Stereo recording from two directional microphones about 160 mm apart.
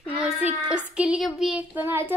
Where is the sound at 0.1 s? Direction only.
10° right (ahead or behind).